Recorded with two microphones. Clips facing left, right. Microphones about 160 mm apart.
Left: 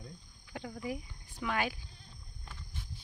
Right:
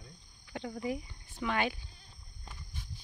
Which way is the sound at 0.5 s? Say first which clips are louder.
Right 3 dB; 5° left (ahead or behind).